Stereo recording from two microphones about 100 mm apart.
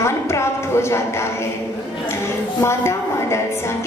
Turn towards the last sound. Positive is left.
turn(degrees=30)  # may be behind; listen again after turning